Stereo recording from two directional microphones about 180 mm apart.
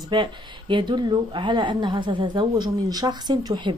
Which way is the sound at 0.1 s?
25° right (ahead or behind).